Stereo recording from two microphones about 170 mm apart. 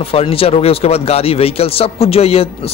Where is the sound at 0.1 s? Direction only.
35° left (ahead or behind).